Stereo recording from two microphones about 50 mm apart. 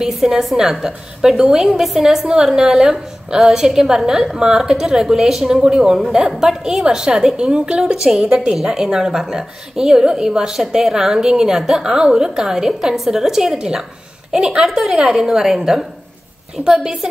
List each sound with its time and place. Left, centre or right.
0.0 s a woman's voice: centre